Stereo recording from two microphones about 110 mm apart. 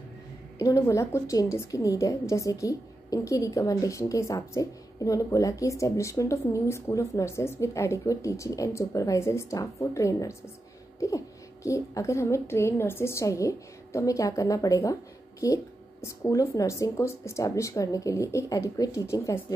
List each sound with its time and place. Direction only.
0.6 s a woman's voice: 30° left (ahead or behind)